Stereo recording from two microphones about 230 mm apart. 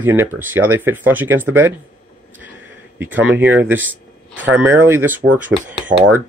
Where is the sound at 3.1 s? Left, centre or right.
Centre.